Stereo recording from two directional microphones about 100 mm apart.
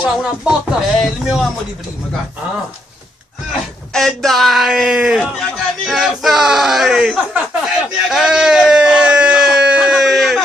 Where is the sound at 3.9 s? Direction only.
Centre (ahead or behind).